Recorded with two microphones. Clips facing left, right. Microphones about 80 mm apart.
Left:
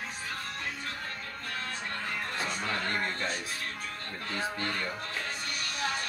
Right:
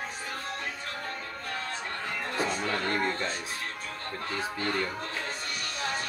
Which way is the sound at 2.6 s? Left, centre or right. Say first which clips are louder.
Right 3 dB; centre.